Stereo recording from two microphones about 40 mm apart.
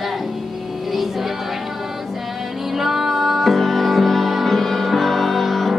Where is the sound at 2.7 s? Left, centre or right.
Centre.